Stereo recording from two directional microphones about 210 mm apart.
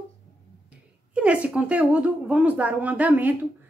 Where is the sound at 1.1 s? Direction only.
5° right (ahead or behind).